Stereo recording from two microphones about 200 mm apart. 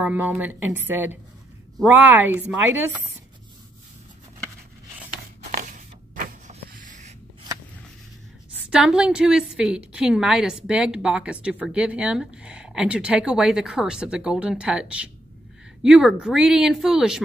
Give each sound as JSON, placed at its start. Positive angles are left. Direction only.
{"t": 0.0, "sound": "speech", "side_deg": -10}
{"t": 5.7, "sound": "a sound", "side_deg": -40}
{"t": 8.6, "sound": "a woman's voice", "side_deg": -5}